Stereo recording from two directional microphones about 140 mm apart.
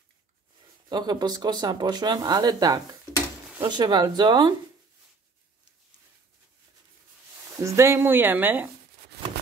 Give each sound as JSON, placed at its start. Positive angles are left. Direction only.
{"t": 0.8, "sound": "speech", "side_deg": -30}
{"t": 7.5, "sound": "speech", "side_deg": -20}